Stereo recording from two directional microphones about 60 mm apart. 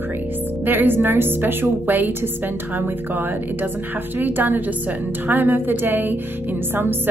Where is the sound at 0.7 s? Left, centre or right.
Right.